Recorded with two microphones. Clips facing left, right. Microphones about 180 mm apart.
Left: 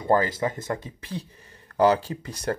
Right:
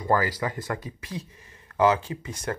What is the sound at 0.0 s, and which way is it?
Speech, 25° left (ahead or behind).